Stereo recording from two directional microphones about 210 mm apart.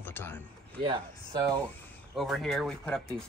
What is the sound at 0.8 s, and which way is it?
Speech, 20° right (ahead or behind).